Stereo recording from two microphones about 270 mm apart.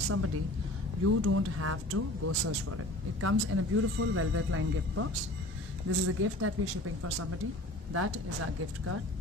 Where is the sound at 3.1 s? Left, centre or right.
Right.